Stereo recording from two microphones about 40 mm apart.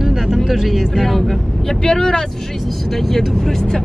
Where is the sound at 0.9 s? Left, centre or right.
Centre.